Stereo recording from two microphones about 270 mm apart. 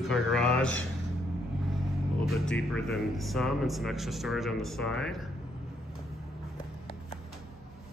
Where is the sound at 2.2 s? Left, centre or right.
Centre.